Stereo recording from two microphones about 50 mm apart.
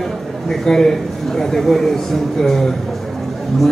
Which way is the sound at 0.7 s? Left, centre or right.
Centre.